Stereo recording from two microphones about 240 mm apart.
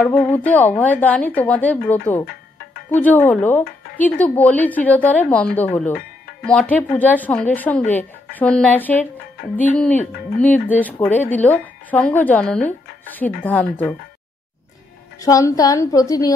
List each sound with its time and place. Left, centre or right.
0.0 s speech: centre
2.2 s music: left
2.9 s speech: centre
15.1 s speech: centre